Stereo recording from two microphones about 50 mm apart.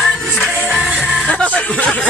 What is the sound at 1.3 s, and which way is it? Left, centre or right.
Music, left.